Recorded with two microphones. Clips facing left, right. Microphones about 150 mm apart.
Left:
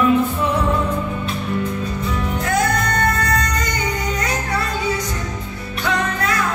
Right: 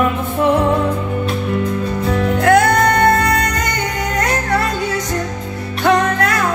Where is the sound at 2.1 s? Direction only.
65° right (ahead or behind).